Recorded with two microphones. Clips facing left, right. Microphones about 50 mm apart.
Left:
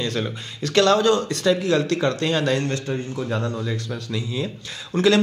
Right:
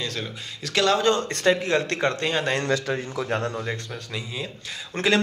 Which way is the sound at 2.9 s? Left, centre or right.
Right.